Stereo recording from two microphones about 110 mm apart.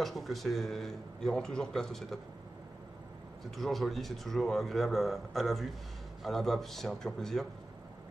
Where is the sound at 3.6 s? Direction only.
Centre (ahead or behind).